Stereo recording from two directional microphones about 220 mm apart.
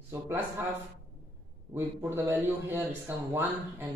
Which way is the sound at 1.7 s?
10° right (ahead or behind).